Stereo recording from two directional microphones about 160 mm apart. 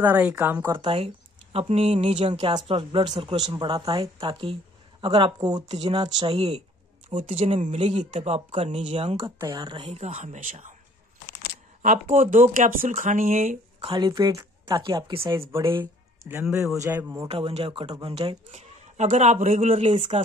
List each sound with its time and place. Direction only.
0.0 s speech: 10° right (ahead or behind)
0.7 s speech: 35° right (ahead or behind)
9.2 s speech: 25° right (ahead or behind); by 10.8 s 50° right (ahead or behind)
11.8 s speech: 55° right (ahead or behind)
13.8 s speech: 30° right (ahead or behind)
15.8 s speech: 15° right (ahead or behind)
17.3 s speech: 35° right (ahead or behind)
18.5 s speech: 50° right (ahead or behind)